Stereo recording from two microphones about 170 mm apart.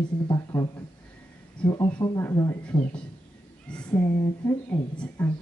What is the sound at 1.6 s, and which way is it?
Speech, 5° left (ahead or behind).